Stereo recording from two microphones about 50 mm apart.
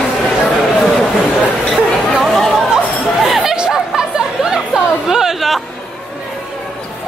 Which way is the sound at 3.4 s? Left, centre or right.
Centre.